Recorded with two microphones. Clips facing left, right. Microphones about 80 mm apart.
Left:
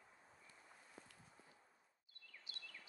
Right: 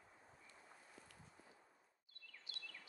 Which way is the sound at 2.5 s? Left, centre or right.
Left.